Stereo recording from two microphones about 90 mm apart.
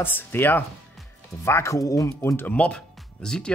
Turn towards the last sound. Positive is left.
turn(degrees=10)  # may be behind; listen again after turning